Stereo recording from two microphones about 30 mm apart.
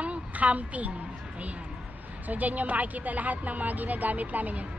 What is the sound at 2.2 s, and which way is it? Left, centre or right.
A woman's voice, right.